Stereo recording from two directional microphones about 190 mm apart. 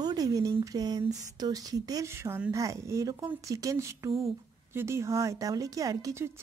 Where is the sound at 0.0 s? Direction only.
20° right (ahead or behind).